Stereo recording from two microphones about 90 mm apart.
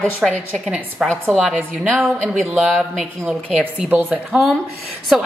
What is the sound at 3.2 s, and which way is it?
Speech, 15° right (ahead or behind).